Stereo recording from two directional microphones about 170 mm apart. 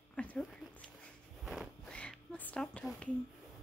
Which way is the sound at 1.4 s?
Centre (ahead or behind).